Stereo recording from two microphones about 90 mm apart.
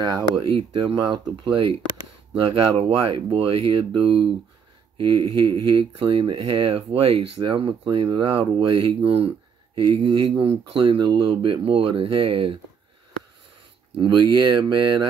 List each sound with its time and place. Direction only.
0.4 s speech: 70° right (ahead or behind)
13.9 s speech: 60° right (ahead or behind)